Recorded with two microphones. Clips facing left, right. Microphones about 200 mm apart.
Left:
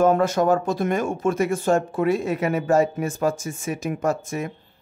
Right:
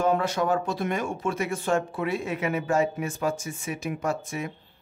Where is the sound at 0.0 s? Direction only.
45° left (ahead or behind).